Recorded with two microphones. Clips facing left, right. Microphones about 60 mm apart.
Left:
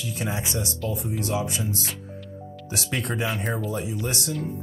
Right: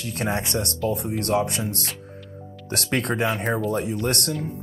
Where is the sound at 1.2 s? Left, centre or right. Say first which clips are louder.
Right 5 dB; right.